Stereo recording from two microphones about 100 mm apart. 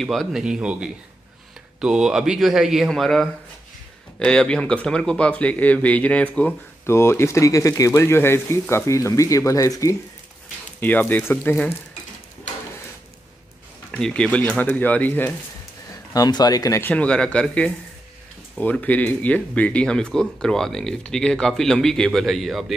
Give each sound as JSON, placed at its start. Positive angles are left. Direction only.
{"t": 0.0, "sound": "speech", "side_deg": 0}
{"t": 6.9, "sound": "speech", "side_deg": 25}
{"t": 10.8, "sound": "speech", "side_deg": 15}
{"t": 13.9, "sound": "speech", "side_deg": 10}
{"t": 15.9, "sound": "speech", "side_deg": 40}
{"t": 16.8, "sound": "speech", "side_deg": 10}